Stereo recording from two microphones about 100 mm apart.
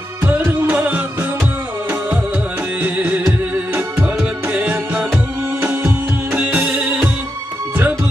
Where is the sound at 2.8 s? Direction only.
15° right (ahead or behind).